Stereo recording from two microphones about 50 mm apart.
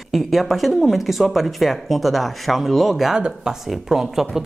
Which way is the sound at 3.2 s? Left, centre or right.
Centre.